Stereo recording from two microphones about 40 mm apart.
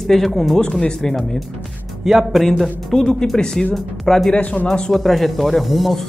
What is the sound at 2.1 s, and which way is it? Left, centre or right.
Speech, centre.